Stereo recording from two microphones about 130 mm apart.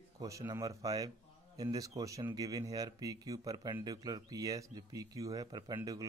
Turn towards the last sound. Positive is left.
turn(degrees=-30)  # may be behind; listen again after turning